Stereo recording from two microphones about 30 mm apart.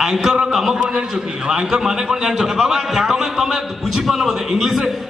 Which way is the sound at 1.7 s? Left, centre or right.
Centre.